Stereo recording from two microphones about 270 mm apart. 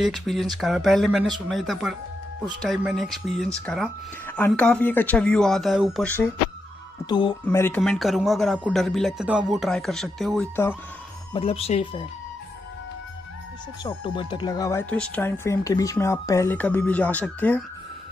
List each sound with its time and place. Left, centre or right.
0.0 s speech: centre
7.1 s speech: centre
7.4 s speech: centre
11.3 s speech: left
13.8 s speech: centre